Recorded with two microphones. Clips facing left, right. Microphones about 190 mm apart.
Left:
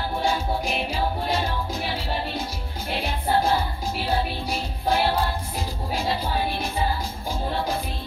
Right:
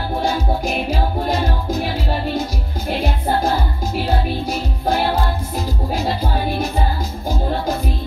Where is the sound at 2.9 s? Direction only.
45° right (ahead or behind).